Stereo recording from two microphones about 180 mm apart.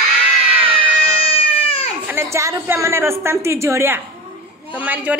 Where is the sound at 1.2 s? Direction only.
30° left (ahead or behind).